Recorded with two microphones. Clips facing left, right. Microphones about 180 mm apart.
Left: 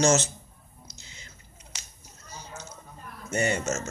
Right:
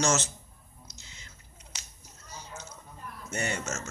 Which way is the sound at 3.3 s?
20° left (ahead or behind).